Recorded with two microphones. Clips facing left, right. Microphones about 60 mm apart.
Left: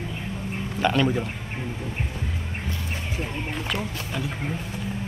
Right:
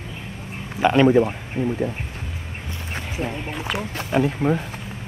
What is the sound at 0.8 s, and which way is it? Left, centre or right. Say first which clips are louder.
Speech: right 7 dB; right.